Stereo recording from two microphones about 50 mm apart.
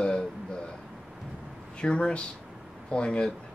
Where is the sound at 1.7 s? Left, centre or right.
Centre.